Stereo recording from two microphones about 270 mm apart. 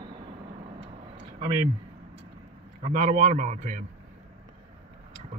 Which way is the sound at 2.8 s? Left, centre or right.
Right.